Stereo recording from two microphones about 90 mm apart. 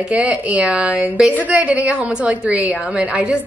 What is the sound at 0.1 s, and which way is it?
A woman's voice, 10° right (ahead or behind).